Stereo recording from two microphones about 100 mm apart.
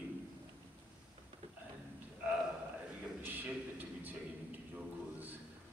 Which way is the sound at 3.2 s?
20° right (ahead or behind).